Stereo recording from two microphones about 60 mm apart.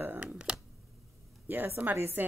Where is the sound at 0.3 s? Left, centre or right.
Centre.